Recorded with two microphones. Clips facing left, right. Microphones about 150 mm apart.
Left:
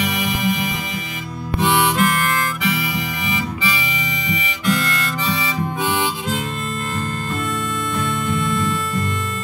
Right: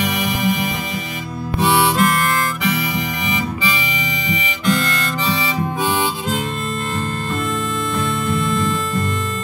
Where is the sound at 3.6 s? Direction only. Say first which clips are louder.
Right 2 dB; 25° right (ahead or behind).